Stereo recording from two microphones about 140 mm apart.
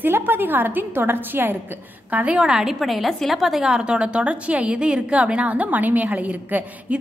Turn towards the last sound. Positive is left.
turn(degrees=-10)  # may be behind; listen again after turning